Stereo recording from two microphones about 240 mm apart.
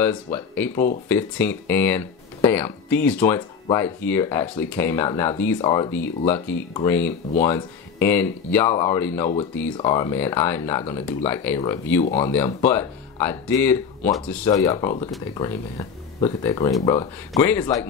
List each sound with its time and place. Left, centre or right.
0.0 s speech: centre
9.3 s speech: left
12.0 s speech: left
12.6 s speech: centre